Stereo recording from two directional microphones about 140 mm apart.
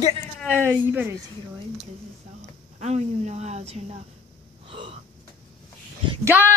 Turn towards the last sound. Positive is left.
turn(degrees=-15)  # may be behind; listen again after turning